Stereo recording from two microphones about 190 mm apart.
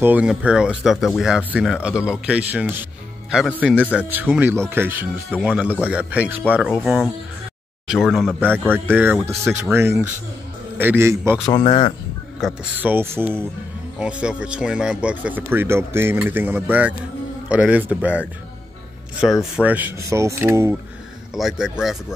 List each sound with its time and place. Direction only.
0.0 s speech: 5° right (ahead or behind)
8.7 s speech: 10° right (ahead or behind)
11.6 s speech: 30° left (ahead or behind)
12.4 s speech: centre (ahead or behind)
12.8 s speech: 10° right (ahead or behind)
19.5 s speech: 10° right (ahead or behind)
21.4 s speech: 5° right (ahead or behind)